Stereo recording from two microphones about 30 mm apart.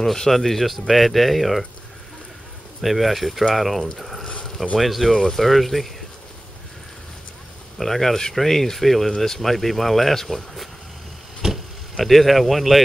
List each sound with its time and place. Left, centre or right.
0.0 s speech: centre
2.8 s speech: centre
4.0 s a sound: centre
4.7 s speech: centre
5.1 s speech: centre
5.4 s speech: centre
7.7 s speech: centre
11.4 s a sound: centre
12.0 s speech: centre